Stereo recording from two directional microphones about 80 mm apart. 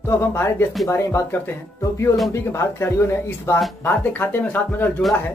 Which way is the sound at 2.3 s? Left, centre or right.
Left.